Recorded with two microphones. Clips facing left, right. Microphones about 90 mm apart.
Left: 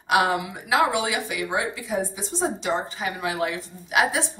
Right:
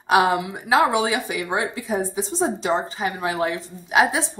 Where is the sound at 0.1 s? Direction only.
25° right (ahead or behind).